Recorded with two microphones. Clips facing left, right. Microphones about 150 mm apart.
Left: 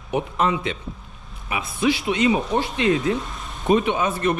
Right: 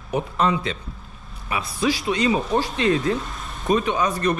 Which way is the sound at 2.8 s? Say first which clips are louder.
Left 2 dB; 20° left (ahead or behind).